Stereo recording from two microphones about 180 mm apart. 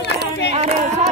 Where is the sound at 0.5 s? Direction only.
40° right (ahead or behind).